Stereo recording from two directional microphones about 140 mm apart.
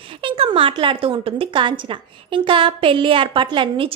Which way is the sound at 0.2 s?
40° right (ahead or behind).